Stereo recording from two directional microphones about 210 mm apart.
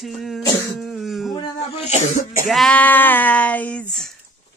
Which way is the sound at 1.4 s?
30° left (ahead or behind).